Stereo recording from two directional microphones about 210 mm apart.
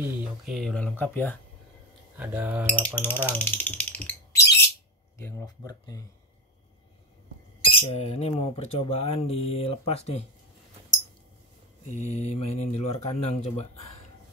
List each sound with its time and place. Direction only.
0.0 s speech: centre (ahead or behind)
2.1 s speech: 10° right (ahead or behind)
2.6 s a sound: 5° left (ahead or behind)
3.0 s speech: 10° left (ahead or behind)
7.7 s speech: 30° left (ahead or behind)
11.8 s speech: 30° left (ahead or behind)